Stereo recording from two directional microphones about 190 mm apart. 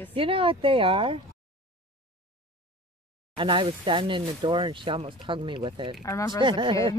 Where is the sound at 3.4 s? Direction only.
25° right (ahead or behind).